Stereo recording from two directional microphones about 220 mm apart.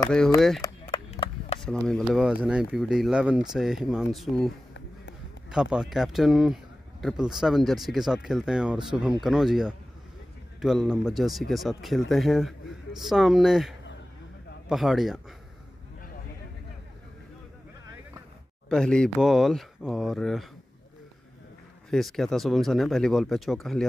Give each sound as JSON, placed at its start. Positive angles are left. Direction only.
{"t": 0.8, "sound": "a sound", "side_deg": 25}
{"t": 1.9, "sound": "speech", "side_deg": 0}
{"t": 5.5, "sound": "speech", "side_deg": -5}
{"t": 18.7, "sound": "speech", "side_deg": 5}
{"t": 21.9, "sound": "speech", "side_deg": 0}